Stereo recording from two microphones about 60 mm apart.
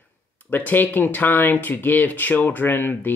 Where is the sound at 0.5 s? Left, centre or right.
Left.